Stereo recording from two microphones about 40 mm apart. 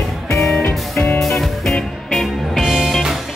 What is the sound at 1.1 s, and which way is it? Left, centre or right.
Music, centre.